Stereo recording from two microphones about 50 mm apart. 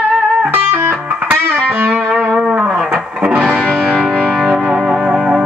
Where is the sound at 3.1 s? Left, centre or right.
Centre.